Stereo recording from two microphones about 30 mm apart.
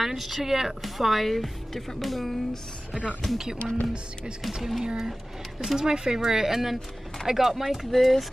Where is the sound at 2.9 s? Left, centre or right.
Centre.